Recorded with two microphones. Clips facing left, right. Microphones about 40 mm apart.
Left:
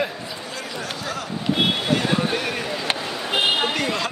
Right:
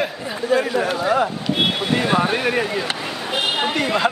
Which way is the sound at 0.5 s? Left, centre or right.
Right.